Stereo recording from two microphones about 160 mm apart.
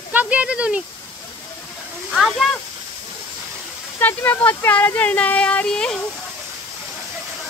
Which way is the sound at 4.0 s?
10° left (ahead or behind).